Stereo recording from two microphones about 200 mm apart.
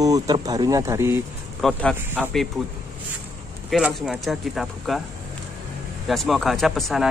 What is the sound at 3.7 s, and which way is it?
Speech, centre (ahead or behind).